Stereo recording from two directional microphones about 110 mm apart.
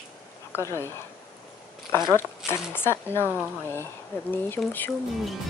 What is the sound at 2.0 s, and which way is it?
Speech, 25° left (ahead or behind).